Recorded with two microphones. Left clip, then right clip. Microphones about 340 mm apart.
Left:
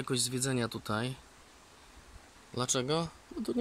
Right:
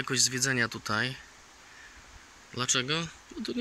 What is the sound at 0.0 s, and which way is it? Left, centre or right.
Speech, centre.